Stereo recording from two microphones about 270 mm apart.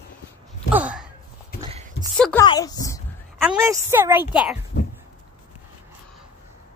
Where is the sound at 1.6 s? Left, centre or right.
Right.